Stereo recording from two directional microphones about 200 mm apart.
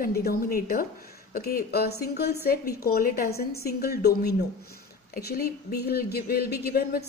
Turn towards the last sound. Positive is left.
turn(degrees=50)  # may be behind; listen again after turning